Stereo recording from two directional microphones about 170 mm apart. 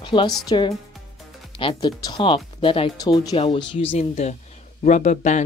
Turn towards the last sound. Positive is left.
turn(degrees=45)  # may be behind; listen again after turning